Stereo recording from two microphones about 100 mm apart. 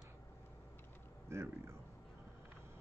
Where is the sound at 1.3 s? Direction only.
25° right (ahead or behind).